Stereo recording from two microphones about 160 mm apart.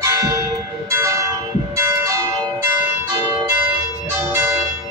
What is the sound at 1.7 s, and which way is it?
Church bell, 15° right (ahead or behind).